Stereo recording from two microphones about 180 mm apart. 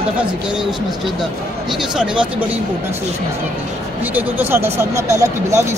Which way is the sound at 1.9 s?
5° right (ahead or behind).